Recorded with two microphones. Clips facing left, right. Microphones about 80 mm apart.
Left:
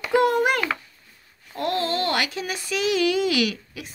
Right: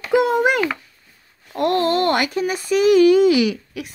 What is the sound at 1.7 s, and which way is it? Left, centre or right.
A child's voice, right.